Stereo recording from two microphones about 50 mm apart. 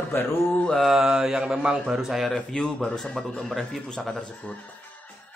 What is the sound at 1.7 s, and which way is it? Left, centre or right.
Speech, centre.